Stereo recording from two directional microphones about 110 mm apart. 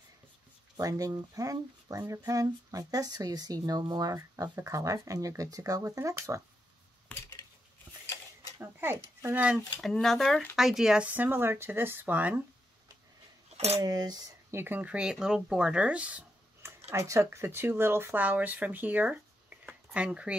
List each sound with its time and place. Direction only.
0.7 s speech: 30° right (ahead or behind)
8.5 s speech: 20° right (ahead or behind)
9.8 s speech: centre (ahead or behind); by 12.4 s 15° right (ahead or behind)
13.7 s speech: 35° right (ahead or behind)
14.5 s speech: 20° right (ahead or behind)
16.9 s speech: 25° right (ahead or behind)
19.6 s a sound: 10° right (ahead or behind)